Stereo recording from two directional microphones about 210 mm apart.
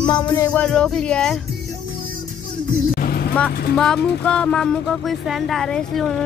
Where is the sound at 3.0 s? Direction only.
45° left (ahead or behind).